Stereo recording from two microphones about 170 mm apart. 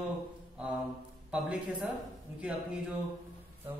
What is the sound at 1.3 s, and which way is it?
Speech, 5° right (ahead or behind).